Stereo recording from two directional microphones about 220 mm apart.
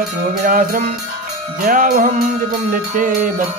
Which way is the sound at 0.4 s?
35° right (ahead or behind).